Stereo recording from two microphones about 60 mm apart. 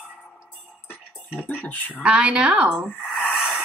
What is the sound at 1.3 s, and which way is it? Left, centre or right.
Speech, left.